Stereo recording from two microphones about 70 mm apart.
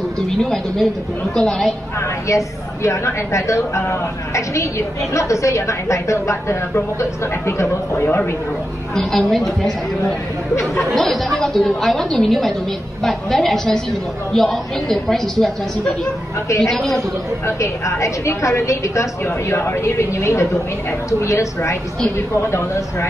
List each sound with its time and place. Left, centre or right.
0.3 s a woman's voice: centre
2.2 s a woman's voice: left
8.9 s a woman's voice: centre
10.8 s a woman's voice: centre
16.4 s a woman's voice: left
16.7 s a woman's voice: centre
17.5 s a woman's voice: left